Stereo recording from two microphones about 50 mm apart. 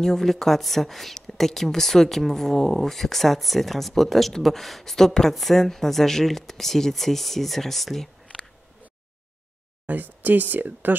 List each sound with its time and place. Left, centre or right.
0.0 s speech: centre
9.8 s speech: right